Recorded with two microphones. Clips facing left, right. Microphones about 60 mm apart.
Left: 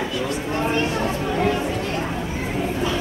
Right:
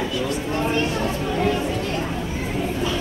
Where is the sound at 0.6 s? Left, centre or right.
Left.